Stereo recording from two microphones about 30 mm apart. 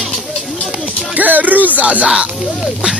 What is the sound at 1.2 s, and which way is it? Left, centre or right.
Music, right.